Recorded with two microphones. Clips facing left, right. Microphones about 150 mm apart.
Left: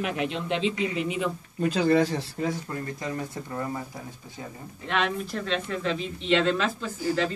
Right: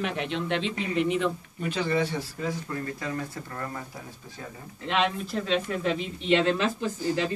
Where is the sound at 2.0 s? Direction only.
35° left (ahead or behind).